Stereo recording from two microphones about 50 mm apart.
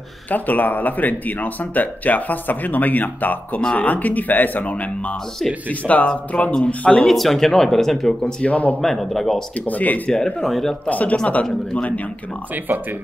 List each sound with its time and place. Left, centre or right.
0.3 s speech: left
6.9 s speech: centre
8.4 s speech: left
8.8 s speech: centre
9.7 s speech: left
10.0 s speech: centre
10.9 s speech: left